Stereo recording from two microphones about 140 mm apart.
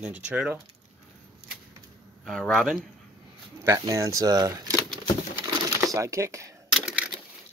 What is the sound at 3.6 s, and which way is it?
Speech, 25° right (ahead or behind).